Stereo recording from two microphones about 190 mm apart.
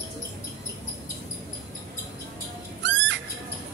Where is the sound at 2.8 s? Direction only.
75° right (ahead or behind).